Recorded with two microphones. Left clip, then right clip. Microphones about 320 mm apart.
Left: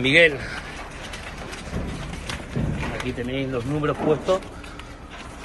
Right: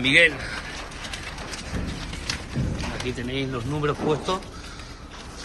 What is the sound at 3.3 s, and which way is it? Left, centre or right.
Speech, centre.